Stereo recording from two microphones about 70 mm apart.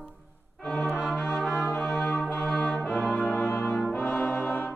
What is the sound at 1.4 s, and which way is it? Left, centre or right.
Music, centre.